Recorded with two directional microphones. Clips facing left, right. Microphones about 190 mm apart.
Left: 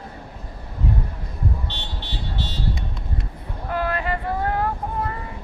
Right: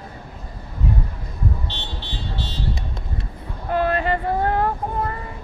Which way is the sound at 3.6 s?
30° right (ahead or behind).